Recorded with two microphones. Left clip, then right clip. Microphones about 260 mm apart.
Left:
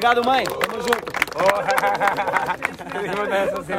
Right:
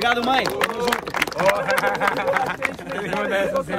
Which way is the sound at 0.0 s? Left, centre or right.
Centre.